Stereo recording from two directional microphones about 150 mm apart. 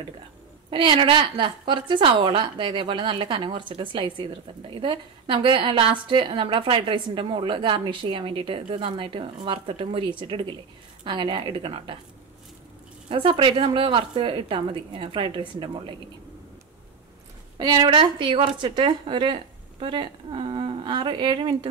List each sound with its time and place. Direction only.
0.7 s a woman's voice: 35° right (ahead or behind)
13.1 s a woman's voice: 35° right (ahead or behind)
17.6 s a woman's voice: 30° right (ahead or behind)